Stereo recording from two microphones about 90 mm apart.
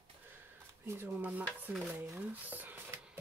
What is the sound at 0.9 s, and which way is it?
Speech, 20° right (ahead or behind).